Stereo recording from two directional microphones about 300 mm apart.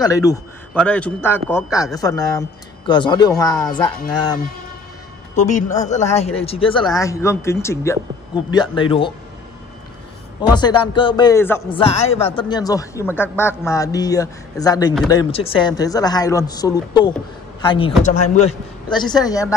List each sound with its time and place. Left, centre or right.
0.0 s speech: centre
5.3 s speech: left
10.4 s speech: centre
11.8 s a man's voice: centre